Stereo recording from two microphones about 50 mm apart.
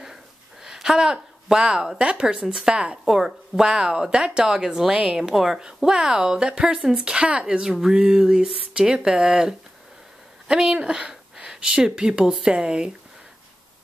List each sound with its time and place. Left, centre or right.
0.0 s a sound: centre
2.5 s a woman's voice: centre
3.1 s speech: centre